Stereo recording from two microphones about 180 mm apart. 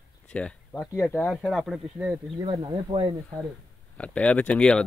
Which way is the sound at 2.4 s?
25° right (ahead or behind).